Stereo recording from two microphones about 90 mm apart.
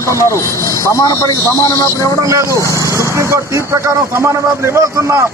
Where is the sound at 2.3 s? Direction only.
35° right (ahead or behind).